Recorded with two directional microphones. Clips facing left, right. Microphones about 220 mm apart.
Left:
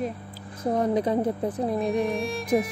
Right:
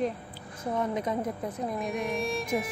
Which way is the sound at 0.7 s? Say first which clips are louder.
Left 6 dB; 35° left (ahead or behind).